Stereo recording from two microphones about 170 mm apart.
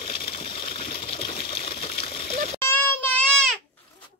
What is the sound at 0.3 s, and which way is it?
Water, 30° left (ahead or behind).